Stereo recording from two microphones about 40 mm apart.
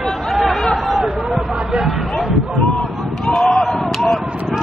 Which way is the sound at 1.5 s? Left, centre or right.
Right.